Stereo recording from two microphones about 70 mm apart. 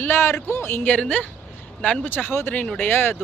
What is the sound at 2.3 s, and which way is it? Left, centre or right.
Speech, left.